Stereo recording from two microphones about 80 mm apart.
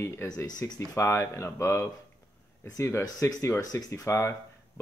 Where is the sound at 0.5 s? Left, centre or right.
Left.